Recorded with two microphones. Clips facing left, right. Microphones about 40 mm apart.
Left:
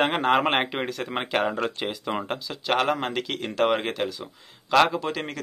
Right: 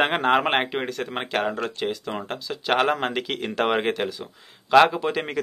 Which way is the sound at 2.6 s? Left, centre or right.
Centre.